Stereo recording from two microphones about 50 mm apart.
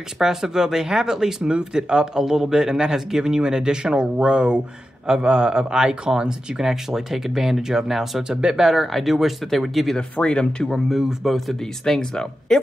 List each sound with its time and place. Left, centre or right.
0.2 s speech: centre
8.6 s speech: centre
9.9 s speech: left
10.9 s speech: centre
11.3 s speech: centre